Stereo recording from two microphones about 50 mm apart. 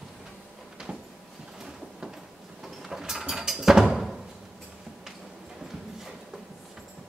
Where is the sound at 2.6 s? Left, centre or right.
Centre.